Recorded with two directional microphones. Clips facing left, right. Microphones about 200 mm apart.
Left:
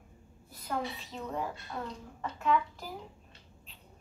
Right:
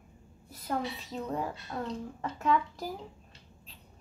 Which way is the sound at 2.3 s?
40° right (ahead or behind).